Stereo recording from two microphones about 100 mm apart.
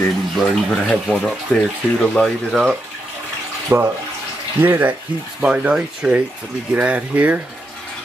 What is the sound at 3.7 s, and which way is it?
Speech, 25° right (ahead or behind).